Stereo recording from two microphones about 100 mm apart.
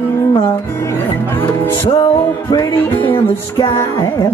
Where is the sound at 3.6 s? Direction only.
35° left (ahead or behind).